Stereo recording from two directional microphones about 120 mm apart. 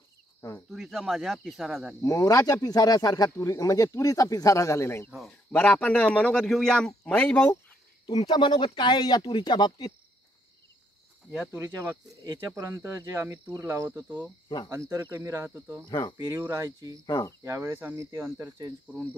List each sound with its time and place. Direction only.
0.4 s speech: 25° left (ahead or behind)
0.7 s speech: centre (ahead or behind)
2.0 s speech: 30° left (ahead or behind)
5.5 s a man's voice: 10° left (ahead or behind)
8.3 s speech: 40° left (ahead or behind)
11.5 s speech: 20° right (ahead or behind)
13.8 s speech: 15° right (ahead or behind)
14.7 s speech: 25° right (ahead or behind)
15.9 s speech: 35° left (ahead or behind)
16.3 s speech: 25° right (ahead or behind)
17.0 s speech: 35° left (ahead or behind)
17.4 s speech: 25° right (ahead or behind)